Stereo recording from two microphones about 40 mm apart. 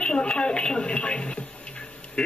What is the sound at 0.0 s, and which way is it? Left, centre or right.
A man's voice, left.